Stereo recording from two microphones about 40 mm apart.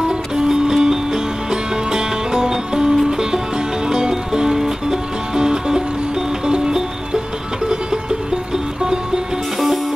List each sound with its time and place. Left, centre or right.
0.4 s music: centre